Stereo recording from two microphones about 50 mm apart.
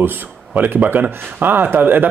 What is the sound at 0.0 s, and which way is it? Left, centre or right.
Speech, right.